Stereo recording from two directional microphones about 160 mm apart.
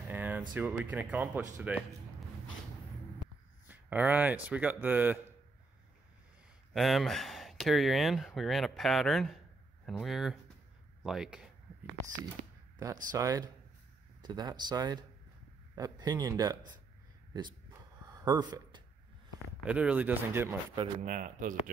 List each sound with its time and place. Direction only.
0.1 s a sound: 10° right (ahead or behind)
0.6 s speech: 10° right (ahead or behind)
3.6 s speech: 10° right (ahead or behind)
6.7 s speech: centre (ahead or behind)
12.7 s speech: 25° right (ahead or behind)
18.0 s a sound: 25° right (ahead or behind)
19.6 s speech: 10° right (ahead or behind)
21.0 s a man's voice: 60° right (ahead or behind)